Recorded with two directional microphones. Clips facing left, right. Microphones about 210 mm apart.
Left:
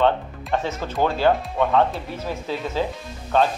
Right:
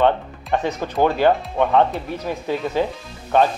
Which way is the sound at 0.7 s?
15° right (ahead or behind).